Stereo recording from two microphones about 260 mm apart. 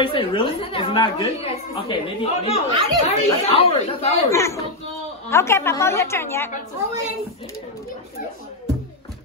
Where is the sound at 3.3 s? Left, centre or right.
Left.